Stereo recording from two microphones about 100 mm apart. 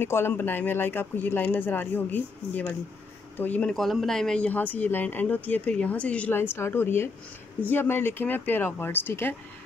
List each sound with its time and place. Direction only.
0.0 s speech: 20° left (ahead or behind)
3.7 s speech: centre (ahead or behind); by 9.3 s 20° left (ahead or behind)